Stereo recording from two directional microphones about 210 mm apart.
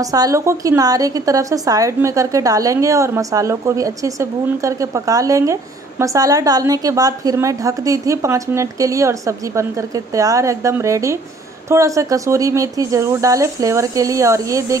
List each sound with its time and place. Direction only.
0.0 s a woman's voice: 15° right (ahead or behind)